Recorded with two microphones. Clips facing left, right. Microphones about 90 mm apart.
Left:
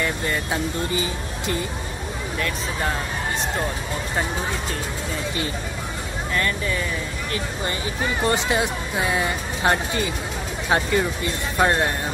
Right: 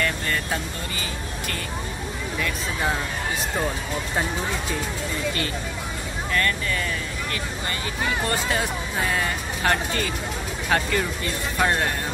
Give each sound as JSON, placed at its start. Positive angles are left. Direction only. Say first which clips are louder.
{"t": 0.0, "sound": "speech", "louder": "left 1 dB", "side_deg": 15}
{"t": 8.3, "sound": "speech", "louder": "left 3 dB", "side_deg": 20}